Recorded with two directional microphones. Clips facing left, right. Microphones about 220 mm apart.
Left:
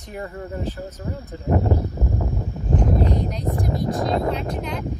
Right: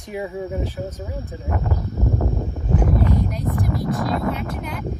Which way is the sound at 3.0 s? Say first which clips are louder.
Right 1 dB; 25° left (ahead or behind).